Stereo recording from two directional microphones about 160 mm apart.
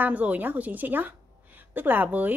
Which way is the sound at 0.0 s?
10° right (ahead or behind).